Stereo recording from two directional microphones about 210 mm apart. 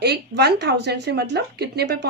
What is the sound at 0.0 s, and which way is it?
Speech, 50° right (ahead or behind).